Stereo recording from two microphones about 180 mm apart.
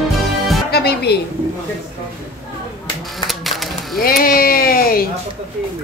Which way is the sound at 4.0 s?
55° left (ahead or behind).